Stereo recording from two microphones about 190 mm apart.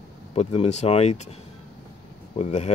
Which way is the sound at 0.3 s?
35° left (ahead or behind).